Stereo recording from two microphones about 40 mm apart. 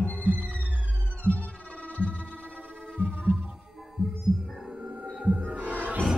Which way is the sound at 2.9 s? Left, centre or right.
Right.